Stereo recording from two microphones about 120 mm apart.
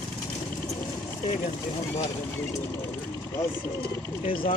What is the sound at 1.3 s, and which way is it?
Speech, 70° left (ahead or behind).